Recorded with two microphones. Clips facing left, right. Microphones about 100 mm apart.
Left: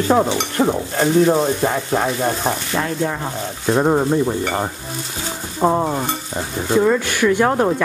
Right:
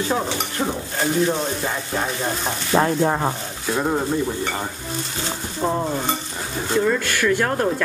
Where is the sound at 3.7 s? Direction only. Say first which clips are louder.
Left 6 dB; 30° left (ahead or behind).